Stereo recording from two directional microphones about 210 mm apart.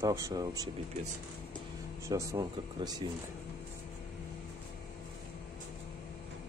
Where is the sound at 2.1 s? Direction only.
15° right (ahead or behind).